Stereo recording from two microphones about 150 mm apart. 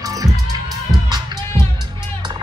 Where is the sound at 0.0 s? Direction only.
25° right (ahead or behind).